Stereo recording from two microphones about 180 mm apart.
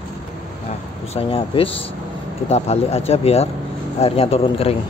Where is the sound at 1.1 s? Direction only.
30° left (ahead or behind).